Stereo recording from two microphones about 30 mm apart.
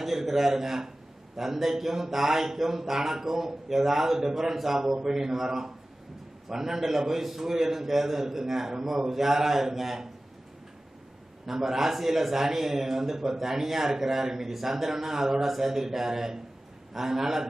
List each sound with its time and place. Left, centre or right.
0.0 s speech: centre
11.4 s speech: centre